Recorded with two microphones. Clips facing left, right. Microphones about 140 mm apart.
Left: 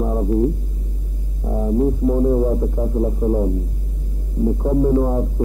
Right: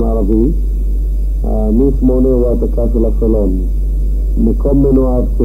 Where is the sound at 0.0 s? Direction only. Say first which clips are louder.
Right 7 dB; 30° right (ahead or behind).